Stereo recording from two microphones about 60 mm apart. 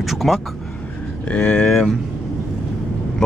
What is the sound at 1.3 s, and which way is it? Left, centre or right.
Speech, centre.